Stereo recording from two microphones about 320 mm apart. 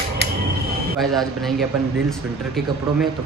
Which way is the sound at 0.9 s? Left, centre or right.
Centre.